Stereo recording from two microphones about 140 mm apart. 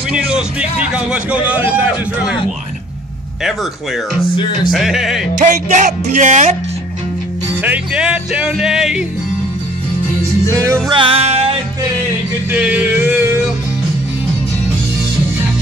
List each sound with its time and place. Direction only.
0.1 s a man's voice: 5° right (ahead or behind)
3.4 s speech: centre (ahead or behind)
5.4 s speech: 60° right (ahead or behind)
7.6 s a man's voice: 10° right (ahead or behind)
10.5 s music: 20° right (ahead or behind)
10.9 s music: 40° right (ahead or behind)
12.4 s music: 10° right (ahead or behind)